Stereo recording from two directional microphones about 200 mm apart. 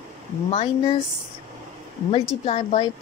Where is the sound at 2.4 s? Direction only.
30° left (ahead or behind).